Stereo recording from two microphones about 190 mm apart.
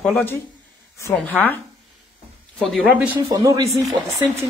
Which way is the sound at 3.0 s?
15° right (ahead or behind).